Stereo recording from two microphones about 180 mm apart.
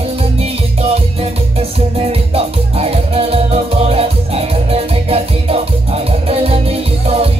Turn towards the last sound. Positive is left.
turn(degrees=-35)  # may be behind; listen again after turning